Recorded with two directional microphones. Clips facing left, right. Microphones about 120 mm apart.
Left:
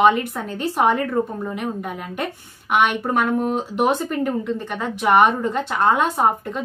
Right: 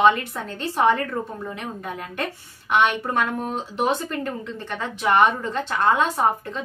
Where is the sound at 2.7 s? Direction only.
10° left (ahead or behind).